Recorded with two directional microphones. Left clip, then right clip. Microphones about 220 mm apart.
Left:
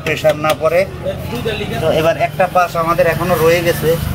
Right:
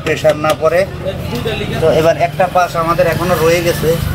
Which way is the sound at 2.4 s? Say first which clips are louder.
Right 1 dB; 15° left (ahead or behind).